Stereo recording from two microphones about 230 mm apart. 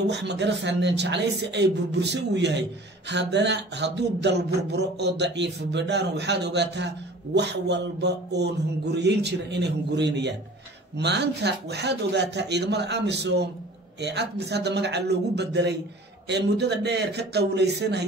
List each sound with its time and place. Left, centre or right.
0.1 s speech: right